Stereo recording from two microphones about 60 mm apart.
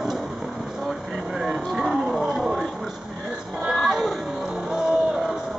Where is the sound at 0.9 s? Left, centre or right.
Centre.